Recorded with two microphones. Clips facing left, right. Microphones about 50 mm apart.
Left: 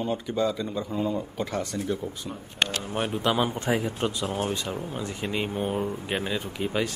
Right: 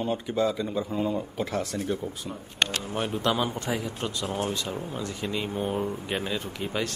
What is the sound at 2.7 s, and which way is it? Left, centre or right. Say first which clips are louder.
Speech: left 1 dB; left.